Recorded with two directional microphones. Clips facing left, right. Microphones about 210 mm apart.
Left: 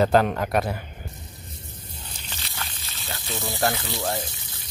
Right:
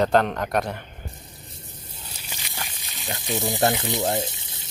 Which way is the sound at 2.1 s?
10° right (ahead or behind).